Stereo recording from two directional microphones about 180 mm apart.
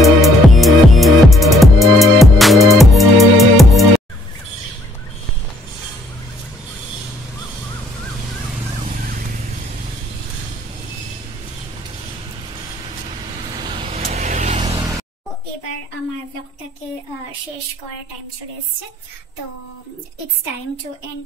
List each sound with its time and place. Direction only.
0.0 s music: centre (ahead or behind)
13.6 s vehicle: 25° right (ahead or behind)
14.8 s music: 15° right (ahead or behind)